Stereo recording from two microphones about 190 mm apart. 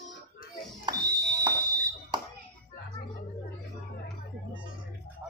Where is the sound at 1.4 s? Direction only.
20° right (ahead or behind).